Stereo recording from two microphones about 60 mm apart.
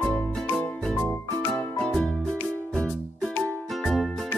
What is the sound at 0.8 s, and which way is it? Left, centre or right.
Music, centre.